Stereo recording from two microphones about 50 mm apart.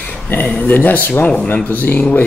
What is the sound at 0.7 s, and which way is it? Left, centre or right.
Speech, left.